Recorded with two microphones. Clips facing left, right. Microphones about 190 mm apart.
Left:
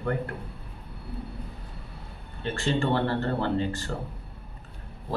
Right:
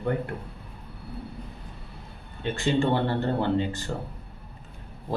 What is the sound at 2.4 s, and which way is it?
Speech, 15° right (ahead or behind).